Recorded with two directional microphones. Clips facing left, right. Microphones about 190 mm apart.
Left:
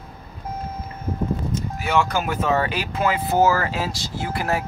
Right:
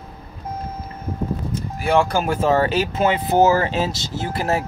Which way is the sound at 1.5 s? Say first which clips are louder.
Right 5 dB; 35° right (ahead or behind).